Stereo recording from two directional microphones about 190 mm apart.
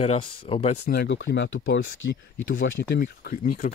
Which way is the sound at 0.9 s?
65° left (ahead or behind).